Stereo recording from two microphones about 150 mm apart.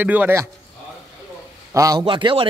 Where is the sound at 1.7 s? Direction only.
25° right (ahead or behind).